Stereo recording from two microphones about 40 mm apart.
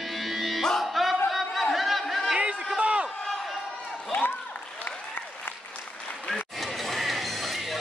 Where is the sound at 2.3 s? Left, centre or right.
Centre.